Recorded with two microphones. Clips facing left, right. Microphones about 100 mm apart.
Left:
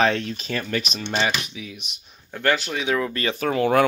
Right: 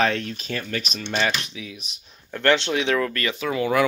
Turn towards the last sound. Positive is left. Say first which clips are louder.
# left 2 dB
turn(degrees=45)  # may be behind; listen again after turning